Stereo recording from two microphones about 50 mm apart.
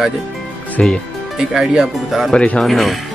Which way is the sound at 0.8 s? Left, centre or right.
Centre.